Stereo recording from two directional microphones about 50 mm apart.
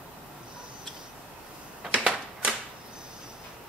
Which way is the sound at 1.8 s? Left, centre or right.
Right.